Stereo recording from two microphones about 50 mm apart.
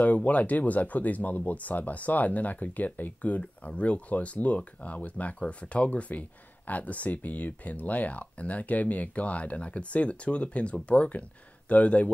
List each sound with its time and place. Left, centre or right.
0.0 s speech: left